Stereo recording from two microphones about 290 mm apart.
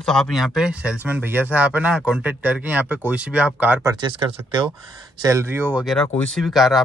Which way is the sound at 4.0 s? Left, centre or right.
Centre.